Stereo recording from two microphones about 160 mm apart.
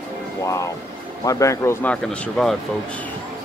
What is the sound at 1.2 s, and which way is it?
Speech, 20° left (ahead or behind).